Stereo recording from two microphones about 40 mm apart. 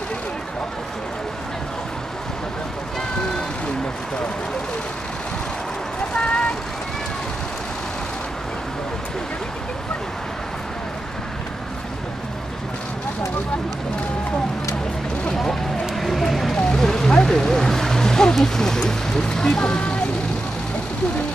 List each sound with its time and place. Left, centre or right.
6.1 s vehicle: left
15.4 s a sound: centre
16.7 s vehicle: centre